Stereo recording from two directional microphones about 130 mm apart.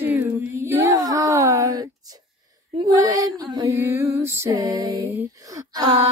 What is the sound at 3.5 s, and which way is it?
Music, 20° right (ahead or behind).